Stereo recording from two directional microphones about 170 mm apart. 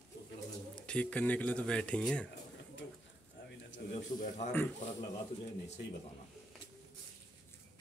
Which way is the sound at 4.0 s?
45° left (ahead or behind).